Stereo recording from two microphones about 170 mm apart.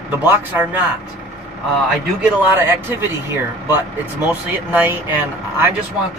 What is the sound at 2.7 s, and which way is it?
Speech, 15° right (ahead or behind).